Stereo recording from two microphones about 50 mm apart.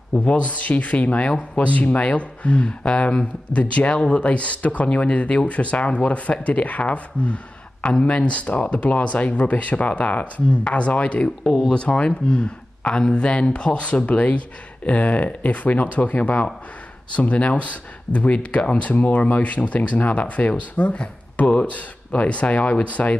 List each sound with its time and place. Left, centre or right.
0.3 s speech: left
11.4 s speech: centre
11.7 s speech: left